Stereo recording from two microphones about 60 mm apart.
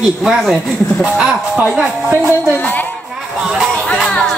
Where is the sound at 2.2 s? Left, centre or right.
Left.